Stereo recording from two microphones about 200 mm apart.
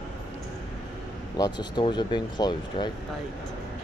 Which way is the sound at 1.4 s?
20° left (ahead or behind).